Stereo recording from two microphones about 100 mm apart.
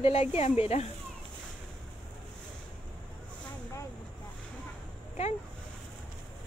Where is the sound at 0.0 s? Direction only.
90° left.